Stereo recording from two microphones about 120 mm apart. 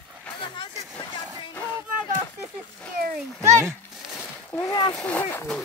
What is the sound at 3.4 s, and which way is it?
Speech, 25° right (ahead or behind).